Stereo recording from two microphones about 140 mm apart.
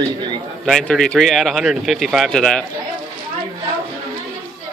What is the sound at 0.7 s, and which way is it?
Speech, 5° left (ahead or behind).